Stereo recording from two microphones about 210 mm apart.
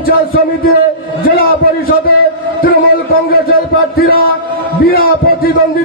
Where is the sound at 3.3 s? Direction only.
45° left (ahead or behind).